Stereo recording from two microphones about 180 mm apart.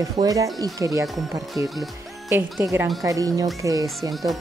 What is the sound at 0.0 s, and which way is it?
Speech, 20° right (ahead or behind).